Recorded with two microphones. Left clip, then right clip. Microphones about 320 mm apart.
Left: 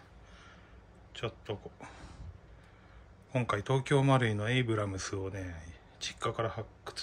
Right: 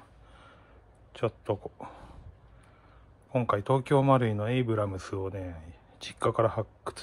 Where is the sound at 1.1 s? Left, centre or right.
Centre.